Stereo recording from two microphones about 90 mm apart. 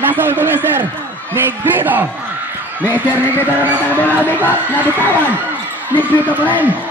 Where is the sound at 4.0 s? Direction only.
20° left (ahead or behind).